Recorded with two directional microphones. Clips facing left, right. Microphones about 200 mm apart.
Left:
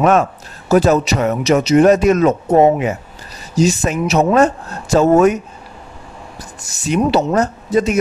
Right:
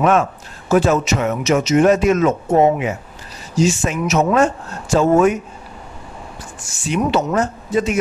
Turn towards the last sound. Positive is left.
turn(degrees=40)  # may be behind; listen again after turning